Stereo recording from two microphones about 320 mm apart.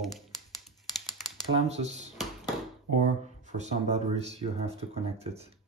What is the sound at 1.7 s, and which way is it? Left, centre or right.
Speech, right.